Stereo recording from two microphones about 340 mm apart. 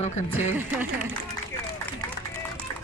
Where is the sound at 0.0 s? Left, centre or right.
Centre.